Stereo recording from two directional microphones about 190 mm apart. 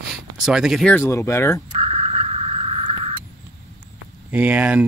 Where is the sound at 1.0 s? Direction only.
15° left (ahead or behind).